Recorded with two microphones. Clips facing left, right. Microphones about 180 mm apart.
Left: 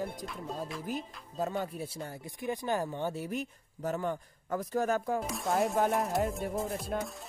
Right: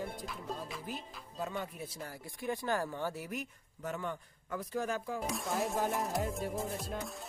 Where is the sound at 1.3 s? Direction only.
40° left (ahead or behind).